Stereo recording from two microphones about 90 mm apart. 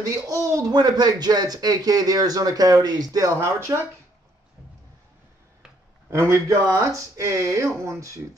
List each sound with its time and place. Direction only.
0.0 s speech: 35° right (ahead or behind)
6.0 s speech: 30° right (ahead or behind)